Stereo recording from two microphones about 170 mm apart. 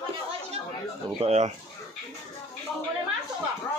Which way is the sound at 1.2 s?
40° right (ahead or behind).